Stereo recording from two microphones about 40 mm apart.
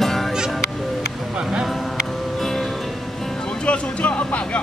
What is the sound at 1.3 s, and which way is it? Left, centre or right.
Music, centre.